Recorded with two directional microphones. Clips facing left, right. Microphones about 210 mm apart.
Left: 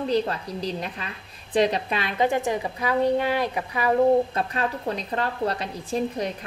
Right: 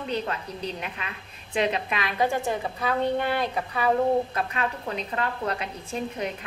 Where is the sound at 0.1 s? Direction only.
35° left (ahead or behind); by 3.9 s 10° left (ahead or behind).